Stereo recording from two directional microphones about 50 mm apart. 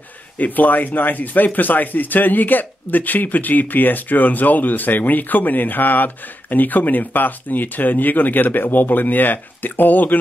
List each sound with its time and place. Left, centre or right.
0.4 s speech: left